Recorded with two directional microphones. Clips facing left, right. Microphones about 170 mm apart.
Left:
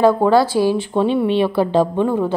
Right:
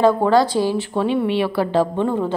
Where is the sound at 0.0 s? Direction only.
10° left (ahead or behind).